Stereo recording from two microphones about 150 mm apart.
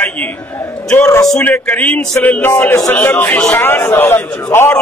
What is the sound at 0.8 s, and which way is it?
Speech, 15° left (ahead or behind).